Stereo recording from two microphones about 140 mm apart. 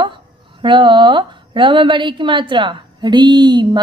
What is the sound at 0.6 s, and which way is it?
A woman's voice, 35° right (ahead or behind).